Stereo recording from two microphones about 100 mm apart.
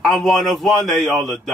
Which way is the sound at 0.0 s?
Centre (ahead or behind).